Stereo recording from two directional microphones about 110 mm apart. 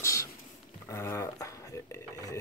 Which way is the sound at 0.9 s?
25° left (ahead or behind).